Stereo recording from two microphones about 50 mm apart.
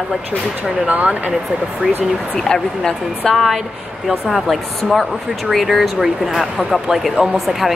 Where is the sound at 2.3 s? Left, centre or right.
Centre.